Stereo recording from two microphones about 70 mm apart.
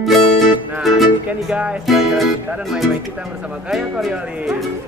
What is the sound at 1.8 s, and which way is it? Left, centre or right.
Speech, centre.